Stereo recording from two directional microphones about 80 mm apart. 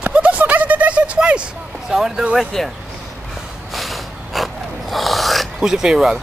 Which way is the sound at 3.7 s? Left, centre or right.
Centre.